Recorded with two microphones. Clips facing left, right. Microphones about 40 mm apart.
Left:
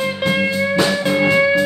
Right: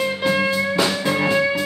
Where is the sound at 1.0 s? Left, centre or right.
Centre.